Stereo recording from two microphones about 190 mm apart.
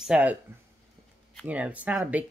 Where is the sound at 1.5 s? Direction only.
5° right (ahead or behind).